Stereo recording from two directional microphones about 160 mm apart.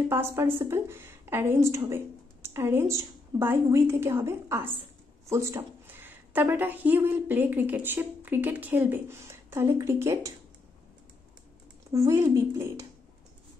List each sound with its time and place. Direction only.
0.1 s a woman's voice: 15° right (ahead or behind)
11.9 s a woman's voice: 20° right (ahead or behind)